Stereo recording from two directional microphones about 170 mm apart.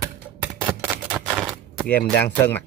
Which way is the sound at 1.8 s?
10° left (ahead or behind).